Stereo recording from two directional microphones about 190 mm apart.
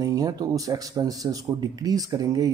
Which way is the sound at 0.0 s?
20° right (ahead or behind).